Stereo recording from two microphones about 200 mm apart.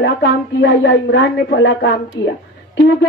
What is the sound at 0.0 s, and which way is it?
Speech, 65° left (ahead or behind).